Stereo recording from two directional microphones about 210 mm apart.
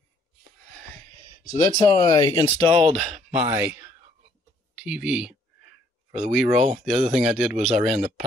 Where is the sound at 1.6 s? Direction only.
15° left (ahead or behind); by 3.7 s 10° right (ahead or behind).